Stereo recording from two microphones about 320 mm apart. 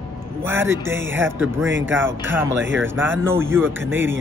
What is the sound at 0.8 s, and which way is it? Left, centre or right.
A man's voice, centre.